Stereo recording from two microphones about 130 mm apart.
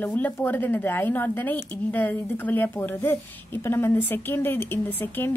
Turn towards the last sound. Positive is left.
turn(degrees=15)  # may be behind; listen again after turning